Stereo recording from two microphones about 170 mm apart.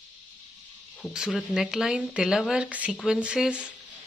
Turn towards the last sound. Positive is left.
turn(degrees=-5)  # may be behind; listen again after turning